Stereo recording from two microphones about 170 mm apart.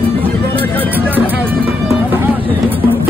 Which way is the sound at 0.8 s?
10° right (ahead or behind).